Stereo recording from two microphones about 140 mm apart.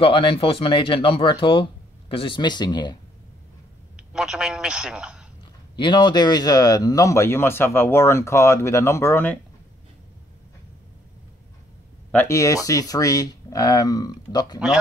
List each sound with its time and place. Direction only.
0.0 s speech: 40° left (ahead or behind)
3.9 s a man's voice: 5° right (ahead or behind)
5.4 s speech: 35° left (ahead or behind); by 9.4 s 15° left (ahead or behind)
12.3 s speech: 25° left (ahead or behind)